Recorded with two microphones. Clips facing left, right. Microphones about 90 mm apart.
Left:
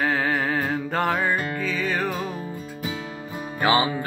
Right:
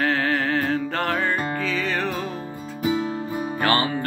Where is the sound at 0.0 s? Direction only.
10° left (ahead or behind).